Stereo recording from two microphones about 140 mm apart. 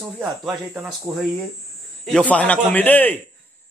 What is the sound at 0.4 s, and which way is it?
Speech, centre (ahead or behind).